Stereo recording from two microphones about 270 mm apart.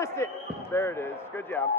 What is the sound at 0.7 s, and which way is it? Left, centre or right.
Speech, centre.